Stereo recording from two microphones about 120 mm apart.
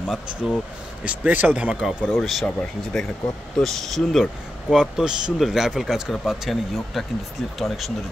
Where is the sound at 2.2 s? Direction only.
5° left (ahead or behind).